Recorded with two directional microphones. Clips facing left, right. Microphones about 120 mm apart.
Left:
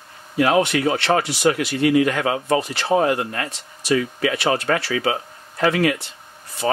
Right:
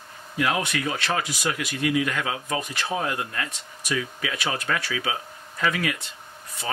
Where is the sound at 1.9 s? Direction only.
55° left (ahead or behind).